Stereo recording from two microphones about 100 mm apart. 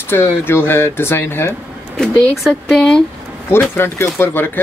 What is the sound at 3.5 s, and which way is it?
Speech, 25° left (ahead or behind).